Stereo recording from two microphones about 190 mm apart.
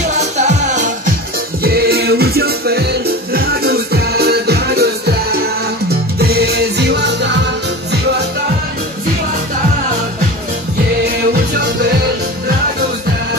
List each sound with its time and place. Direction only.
0.0 s music: 35° right (ahead or behind)
1.6 s music: 55° right (ahead or behind)